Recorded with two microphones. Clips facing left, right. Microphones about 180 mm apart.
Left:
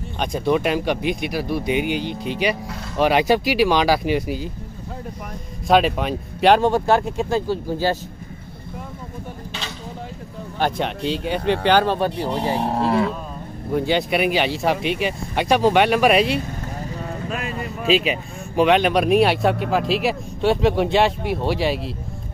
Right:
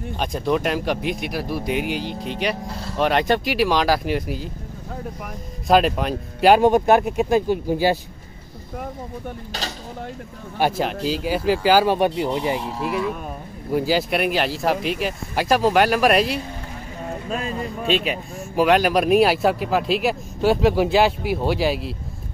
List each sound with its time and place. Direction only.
0.2 s speech: centre (ahead or behind)
5.7 s speech: centre (ahead or behind)
6.6 s speech: 15° right (ahead or behind)
10.6 s speech: centre (ahead or behind)
12.5 s speech: 60° left (ahead or behind)
13.7 s speech: 5° right (ahead or behind)
17.3 s speech: 30° right (ahead or behind)
17.6 s speech: centre (ahead or behind)